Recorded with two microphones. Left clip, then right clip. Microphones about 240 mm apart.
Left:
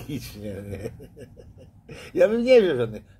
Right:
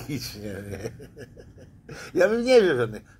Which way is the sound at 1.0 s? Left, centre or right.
Centre.